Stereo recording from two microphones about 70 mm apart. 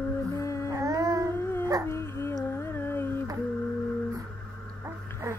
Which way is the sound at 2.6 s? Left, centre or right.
Left.